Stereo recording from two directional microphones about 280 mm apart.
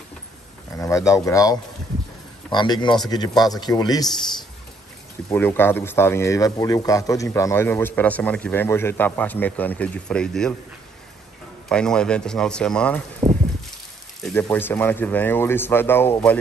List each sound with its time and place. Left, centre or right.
0.7 s a man's voice: centre
5.3 s a man's voice: centre
11.7 s speech: centre
13.2 s a sound: centre
14.2 s a man's voice: centre